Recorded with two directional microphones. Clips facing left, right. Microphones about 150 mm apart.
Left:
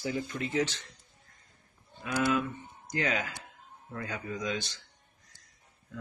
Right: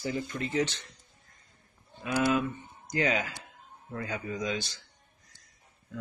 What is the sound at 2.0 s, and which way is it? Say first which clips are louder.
Speech: right 2 dB; 10° right (ahead or behind).